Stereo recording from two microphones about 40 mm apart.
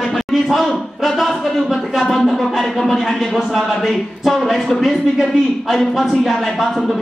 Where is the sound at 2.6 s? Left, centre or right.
Centre.